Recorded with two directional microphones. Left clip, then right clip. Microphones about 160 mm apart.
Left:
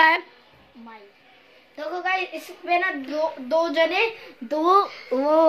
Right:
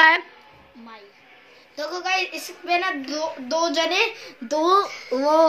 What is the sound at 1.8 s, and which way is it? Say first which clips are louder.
A woman's voice: right 1 dB; 10° left (ahead or behind).